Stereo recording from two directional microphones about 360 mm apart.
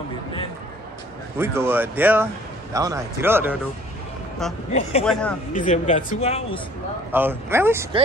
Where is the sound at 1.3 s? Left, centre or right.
Centre.